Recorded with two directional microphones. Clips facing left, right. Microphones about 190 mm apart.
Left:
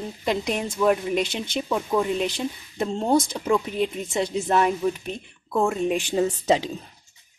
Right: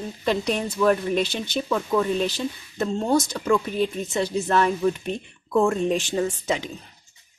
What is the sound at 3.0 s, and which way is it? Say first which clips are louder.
Speech: left 1 dB; 25° left (ahead or behind).